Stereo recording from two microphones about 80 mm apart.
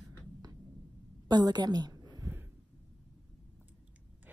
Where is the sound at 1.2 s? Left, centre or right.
Right.